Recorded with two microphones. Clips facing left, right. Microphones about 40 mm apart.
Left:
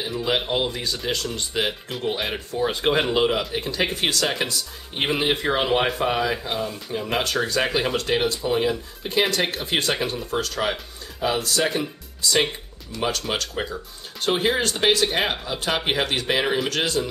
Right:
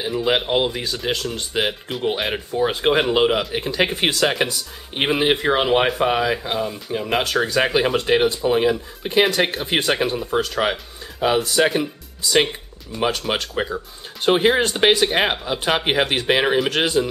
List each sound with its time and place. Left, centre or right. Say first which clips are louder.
0.0 s speech: right 4 dB; centre
12.9 s speech: right 4 dB; centre